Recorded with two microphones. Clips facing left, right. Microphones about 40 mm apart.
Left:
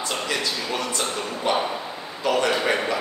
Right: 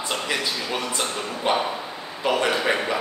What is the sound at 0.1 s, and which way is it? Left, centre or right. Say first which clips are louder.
Speech: right 1 dB; centre.